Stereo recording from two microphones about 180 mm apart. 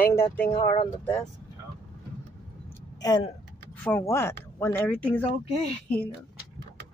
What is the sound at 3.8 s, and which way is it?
Speech, 10° left (ahead or behind).